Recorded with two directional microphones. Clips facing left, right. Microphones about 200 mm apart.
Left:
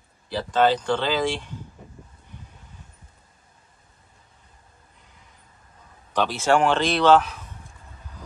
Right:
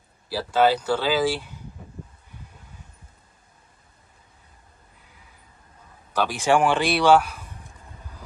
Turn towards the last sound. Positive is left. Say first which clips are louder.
# even
turn(degrees=-10)  # may be behind; listen again after turning